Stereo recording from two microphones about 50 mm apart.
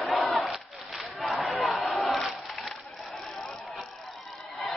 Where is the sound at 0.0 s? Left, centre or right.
Centre.